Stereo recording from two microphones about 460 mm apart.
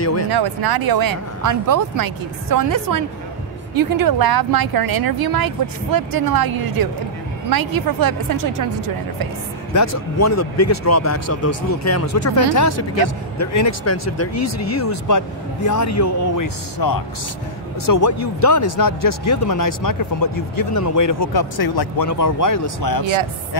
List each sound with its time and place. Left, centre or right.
0.0 s speech: left
0.3 s speech: right
9.8 s speech: left
22.0 s speech: left